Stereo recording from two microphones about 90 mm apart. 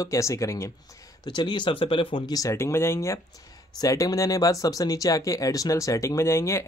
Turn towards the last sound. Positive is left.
turn(degrees=30)  # may be behind; listen again after turning